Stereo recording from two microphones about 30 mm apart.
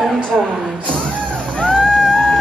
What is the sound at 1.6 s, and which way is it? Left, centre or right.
Music, centre.